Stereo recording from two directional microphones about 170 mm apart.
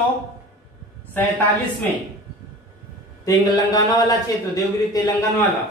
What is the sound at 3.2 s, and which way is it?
A man's voice, 20° left (ahead or behind).